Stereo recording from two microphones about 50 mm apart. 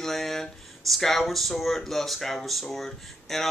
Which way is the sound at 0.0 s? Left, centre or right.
Centre.